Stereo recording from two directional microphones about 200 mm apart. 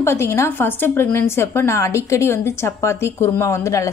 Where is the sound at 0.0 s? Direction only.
15° left (ahead or behind).